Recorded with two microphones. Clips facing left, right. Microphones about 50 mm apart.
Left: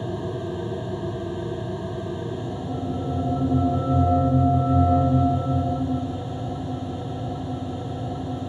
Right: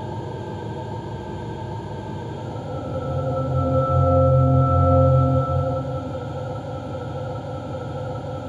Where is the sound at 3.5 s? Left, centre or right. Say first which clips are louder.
Right 3 dB; right.